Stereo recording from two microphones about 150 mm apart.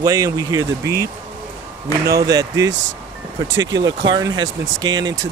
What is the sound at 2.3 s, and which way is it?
Speech, 25° right (ahead or behind).